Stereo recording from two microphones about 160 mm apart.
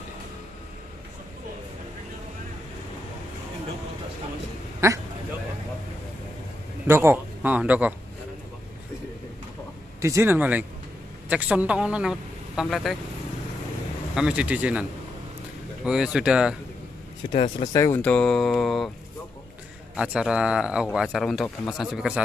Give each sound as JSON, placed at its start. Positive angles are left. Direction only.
{"t": 4.7, "sound": "a sound", "side_deg": -20}
{"t": 6.9, "sound": "a man's voice", "side_deg": -15}
{"t": 10.0, "sound": "a man's voice", "side_deg": -15}
{"t": 14.1, "sound": "a man's voice", "side_deg": -5}
{"t": 17.3, "sound": "speech", "side_deg": 35}
{"t": 17.7, "sound": "speech", "side_deg": 20}
{"t": 18.0, "sound": "speech", "side_deg": 5}
{"t": 20.0, "sound": "speech", "side_deg": -5}